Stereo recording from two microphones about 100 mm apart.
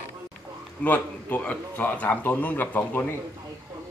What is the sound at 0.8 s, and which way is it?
A man's voice, 20° left (ahead or behind).